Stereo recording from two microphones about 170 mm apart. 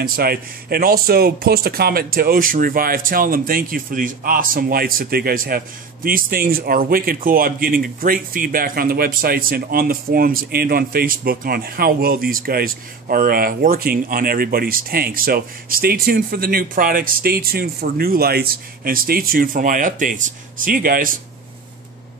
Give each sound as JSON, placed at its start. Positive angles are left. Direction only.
{"t": 0.0, "sound": "a man's voice", "side_deg": -60}